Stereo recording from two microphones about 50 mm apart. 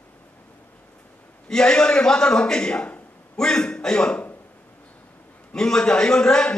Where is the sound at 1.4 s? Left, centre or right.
Centre.